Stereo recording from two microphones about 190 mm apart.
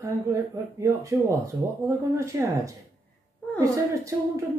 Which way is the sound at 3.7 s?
15° right (ahead or behind).